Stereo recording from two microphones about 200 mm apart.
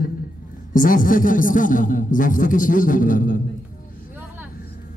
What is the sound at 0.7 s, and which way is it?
Speech, 45° left (ahead or behind).